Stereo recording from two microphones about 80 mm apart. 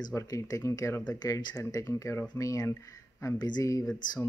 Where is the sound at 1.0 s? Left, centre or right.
Left.